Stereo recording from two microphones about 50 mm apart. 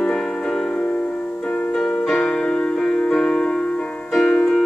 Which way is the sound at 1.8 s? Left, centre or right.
Centre.